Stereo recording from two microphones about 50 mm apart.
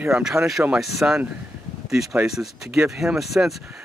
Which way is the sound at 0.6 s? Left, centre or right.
Right.